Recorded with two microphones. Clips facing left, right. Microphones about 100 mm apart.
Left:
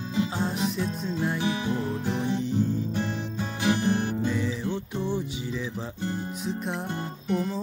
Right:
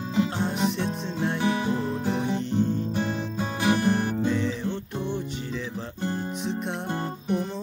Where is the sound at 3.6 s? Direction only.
50° right (ahead or behind).